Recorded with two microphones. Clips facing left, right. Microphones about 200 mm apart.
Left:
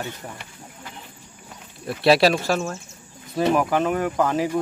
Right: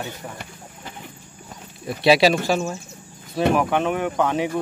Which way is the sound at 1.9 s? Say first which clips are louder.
Right 1 dB; centre (ahead or behind).